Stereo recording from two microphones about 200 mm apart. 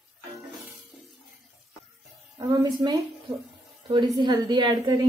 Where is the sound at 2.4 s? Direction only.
15° right (ahead or behind).